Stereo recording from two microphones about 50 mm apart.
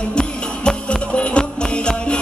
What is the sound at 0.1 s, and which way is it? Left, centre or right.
Music, centre.